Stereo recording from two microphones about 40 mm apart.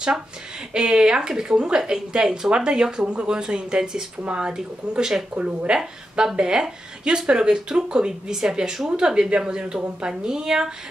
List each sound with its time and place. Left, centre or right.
0.7 s a woman's voice: centre